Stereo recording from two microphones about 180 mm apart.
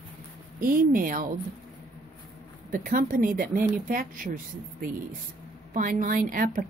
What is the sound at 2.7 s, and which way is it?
Speech, 50° right (ahead or behind).